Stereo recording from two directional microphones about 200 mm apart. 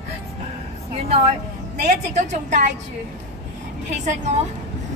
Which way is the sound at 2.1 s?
35° right (ahead or behind).